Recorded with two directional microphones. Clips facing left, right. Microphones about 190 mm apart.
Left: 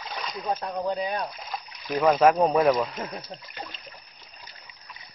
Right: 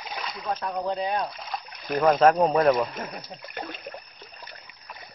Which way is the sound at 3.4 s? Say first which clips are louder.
Right 5 dB; 55° right (ahead or behind).